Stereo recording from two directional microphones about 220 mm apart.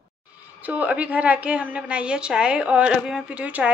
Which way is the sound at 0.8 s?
5° right (ahead or behind).